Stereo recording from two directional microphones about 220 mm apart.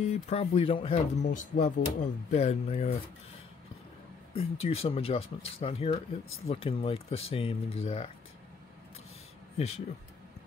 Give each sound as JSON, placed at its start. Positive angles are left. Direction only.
{"t": 0.0, "sound": "speech", "side_deg": 30}
{"t": 4.4, "sound": "speech", "side_deg": 25}